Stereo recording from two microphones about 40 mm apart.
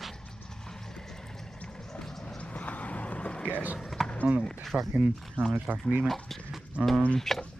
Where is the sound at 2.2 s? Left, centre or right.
Left.